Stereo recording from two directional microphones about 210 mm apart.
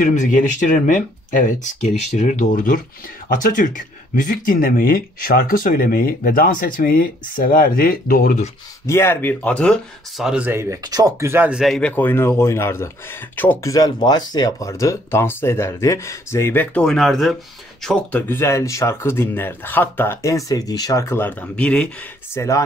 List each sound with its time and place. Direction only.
0.0 s speech: 35° left (ahead or behind)
8.8 s speech: 10° left (ahead or behind)